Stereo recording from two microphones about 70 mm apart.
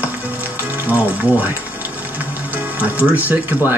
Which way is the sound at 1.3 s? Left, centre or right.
Right.